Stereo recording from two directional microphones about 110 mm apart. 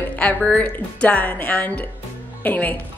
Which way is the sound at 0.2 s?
15° left (ahead or behind).